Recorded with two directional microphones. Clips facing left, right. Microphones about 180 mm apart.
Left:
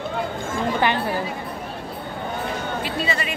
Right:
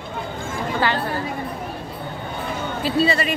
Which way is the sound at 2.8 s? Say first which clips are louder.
Right 10 dB; 35° right (ahead or behind).